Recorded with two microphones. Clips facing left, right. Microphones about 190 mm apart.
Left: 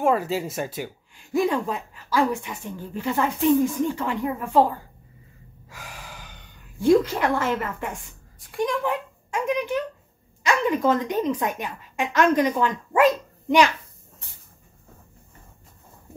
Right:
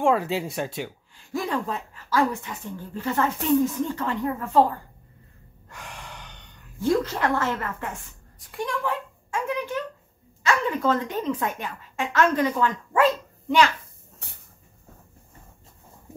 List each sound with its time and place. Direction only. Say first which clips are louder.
0.0 s speech: even; 5° left (ahead or behind)
1.1 s a woman's voice: left 5 dB; 15° left (ahead or behind)
5.7 s gasp: even; 5° left (ahead or behind)
6.8 s a woman's voice: left 4 dB; 15° left (ahead or behind)
8.4 s a child's voice: left 5 dB; centre (ahead or behind)
8.6 s a sound: left 3 dB; 15° left (ahead or behind)
10.4 s a woman's voice: left 2 dB; 15° left (ahead or behind)